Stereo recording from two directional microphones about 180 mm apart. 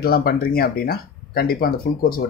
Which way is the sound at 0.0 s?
55° left (ahead or behind).